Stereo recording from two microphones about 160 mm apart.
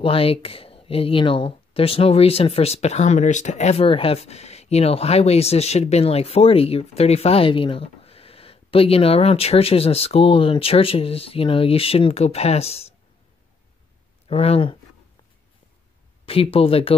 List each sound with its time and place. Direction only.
0.0 s speech: 35° left (ahead or behind)
14.2 s speech: 40° left (ahead or behind)
16.3 s speech: 35° left (ahead or behind)